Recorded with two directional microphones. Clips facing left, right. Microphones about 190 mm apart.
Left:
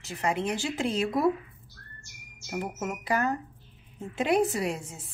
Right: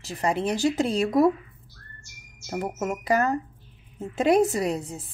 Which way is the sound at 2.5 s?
40° right (ahead or behind).